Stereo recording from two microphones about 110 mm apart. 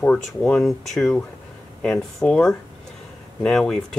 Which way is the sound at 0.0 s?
10° left (ahead or behind).